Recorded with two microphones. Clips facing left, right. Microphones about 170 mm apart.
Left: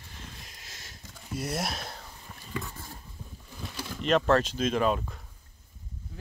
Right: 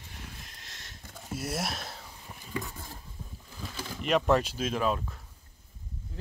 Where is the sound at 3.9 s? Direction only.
5° right (ahead or behind).